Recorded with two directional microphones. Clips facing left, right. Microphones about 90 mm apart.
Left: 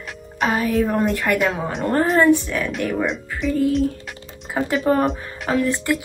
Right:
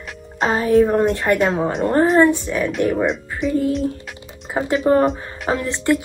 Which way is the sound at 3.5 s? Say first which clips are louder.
Left 1 dB; 35° right (ahead or behind).